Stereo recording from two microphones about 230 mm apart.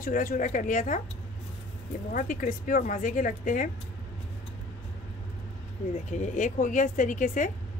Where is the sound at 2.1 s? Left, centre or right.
Left.